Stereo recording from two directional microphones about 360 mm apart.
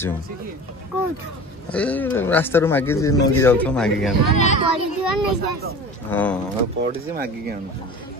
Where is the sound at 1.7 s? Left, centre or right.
Centre.